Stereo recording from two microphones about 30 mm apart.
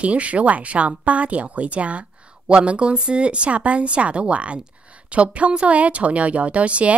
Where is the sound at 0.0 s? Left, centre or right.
Right.